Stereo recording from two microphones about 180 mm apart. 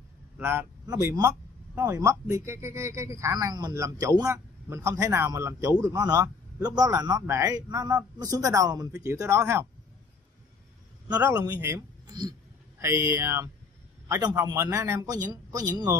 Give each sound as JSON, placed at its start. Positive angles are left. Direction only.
{"t": 0.4, "sound": "speech", "side_deg": -15}
{"t": 11.1, "sound": "a man's voice", "side_deg": -15}